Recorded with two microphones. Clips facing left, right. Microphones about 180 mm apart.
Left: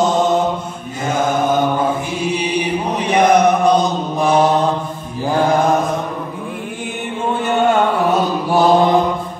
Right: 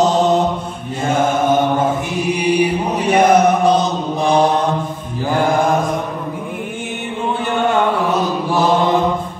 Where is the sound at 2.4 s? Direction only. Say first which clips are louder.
Right 3 dB; 10° right (ahead or behind).